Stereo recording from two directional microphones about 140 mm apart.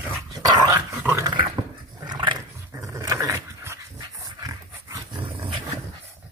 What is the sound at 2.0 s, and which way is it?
Dog, 30° right (ahead or behind).